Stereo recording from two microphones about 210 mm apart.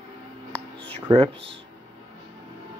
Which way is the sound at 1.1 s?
20° right (ahead or behind).